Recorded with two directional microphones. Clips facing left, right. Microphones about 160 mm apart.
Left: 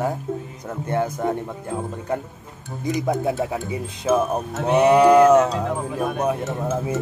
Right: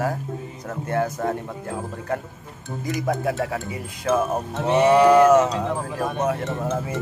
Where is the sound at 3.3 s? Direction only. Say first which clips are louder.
Left 2 dB; 10° left (ahead or behind).